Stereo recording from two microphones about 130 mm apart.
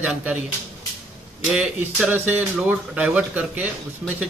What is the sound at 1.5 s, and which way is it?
A man's voice, 5° right (ahead or behind).